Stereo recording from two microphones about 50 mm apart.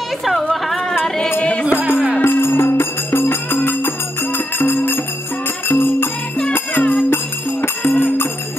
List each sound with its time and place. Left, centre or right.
1.0 s music: centre
1.4 s music: left
2.2 s music: left
6.5 s music: left
7.6 s music: left